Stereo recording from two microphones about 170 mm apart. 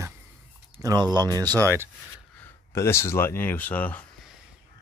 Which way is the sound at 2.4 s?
15° left (ahead or behind).